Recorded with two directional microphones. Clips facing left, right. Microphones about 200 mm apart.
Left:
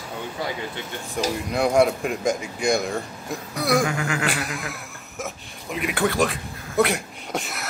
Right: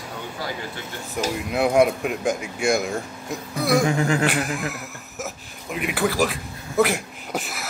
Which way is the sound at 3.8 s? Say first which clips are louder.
Right 5 dB; 30° right (ahead or behind).